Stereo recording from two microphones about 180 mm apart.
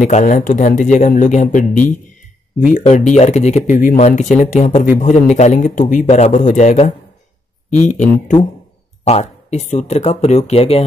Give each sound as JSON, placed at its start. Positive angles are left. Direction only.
{"t": 0.0, "sound": "speech", "side_deg": 45}